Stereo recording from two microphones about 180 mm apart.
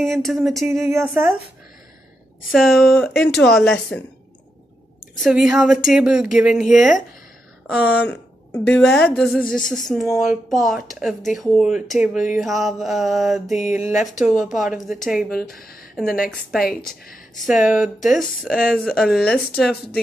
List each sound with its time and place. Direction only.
0.0 s speech: centre (ahead or behind)
2.5 s speech: centre (ahead or behind)
5.1 s speech: centre (ahead or behind)
13.6 s speech: 45° left (ahead or behind)
13.9 s speech: 5° right (ahead or behind)
17.6 s speech: 5° right (ahead or behind)